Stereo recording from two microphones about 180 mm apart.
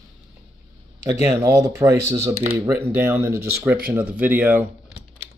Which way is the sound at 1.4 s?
15° right (ahead or behind).